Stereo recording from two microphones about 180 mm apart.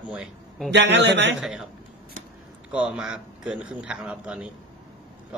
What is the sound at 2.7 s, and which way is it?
Speech, 5° right (ahead or behind).